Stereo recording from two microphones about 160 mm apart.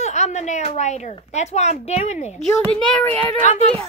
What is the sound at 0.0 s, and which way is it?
A woman's voice, 45° left (ahead or behind).